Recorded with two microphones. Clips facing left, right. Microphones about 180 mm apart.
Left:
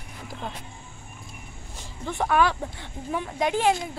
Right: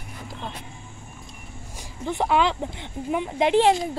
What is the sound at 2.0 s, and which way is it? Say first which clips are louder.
Speech: right 1 dB; 15° right (ahead or behind).